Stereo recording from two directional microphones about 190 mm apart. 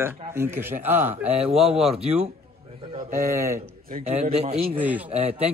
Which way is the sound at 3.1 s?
15° right (ahead or behind).